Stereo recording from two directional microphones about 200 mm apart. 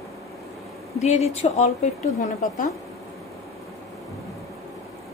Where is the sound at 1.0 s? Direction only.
35° left (ahead or behind).